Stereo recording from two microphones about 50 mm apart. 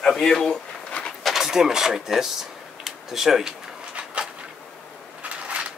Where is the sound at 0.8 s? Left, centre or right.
Left.